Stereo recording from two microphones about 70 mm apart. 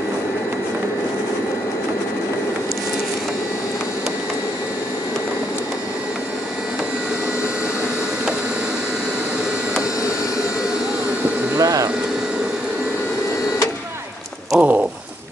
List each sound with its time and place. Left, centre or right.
11.5 s vacuum cleaner: right
14.5 s bird: centre